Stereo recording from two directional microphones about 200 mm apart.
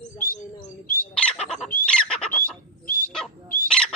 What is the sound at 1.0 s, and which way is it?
Speech, 5° left (ahead or behind).